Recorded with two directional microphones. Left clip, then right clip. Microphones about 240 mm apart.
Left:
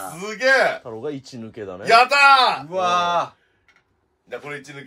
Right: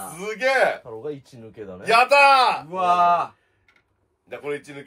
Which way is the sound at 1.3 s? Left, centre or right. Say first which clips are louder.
Left 6 dB; left.